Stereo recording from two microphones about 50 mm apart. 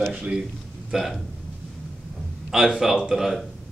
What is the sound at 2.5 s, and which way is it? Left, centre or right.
Speech, centre.